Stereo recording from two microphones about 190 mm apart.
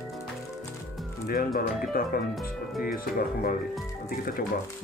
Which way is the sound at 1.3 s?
50° left (ahead or behind).